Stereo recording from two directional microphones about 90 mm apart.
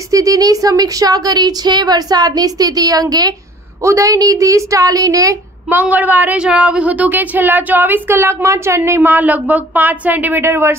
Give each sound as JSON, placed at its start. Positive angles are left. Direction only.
{"t": 0.1, "sound": "a woman's voice", "side_deg": -40}
{"t": 5.7, "sound": "a woman's voice", "side_deg": -20}